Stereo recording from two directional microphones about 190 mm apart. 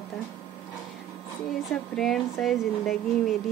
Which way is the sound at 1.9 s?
Centre (ahead or behind).